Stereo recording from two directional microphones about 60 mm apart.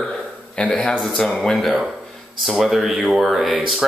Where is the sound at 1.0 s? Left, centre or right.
Centre.